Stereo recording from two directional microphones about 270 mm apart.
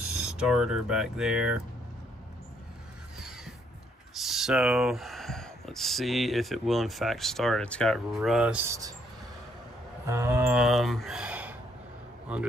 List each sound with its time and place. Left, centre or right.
0.1 s speech: centre
4.1 s speech: centre
10.0 s speech: centre